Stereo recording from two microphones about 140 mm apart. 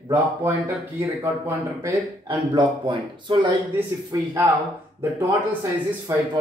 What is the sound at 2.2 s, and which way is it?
A man's voice, 35° right (ahead or behind).